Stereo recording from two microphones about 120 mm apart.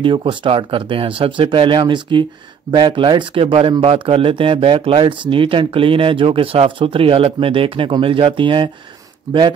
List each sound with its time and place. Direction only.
0.0 s speech: 45° right (ahead or behind)
9.3 s speech: 30° right (ahead or behind)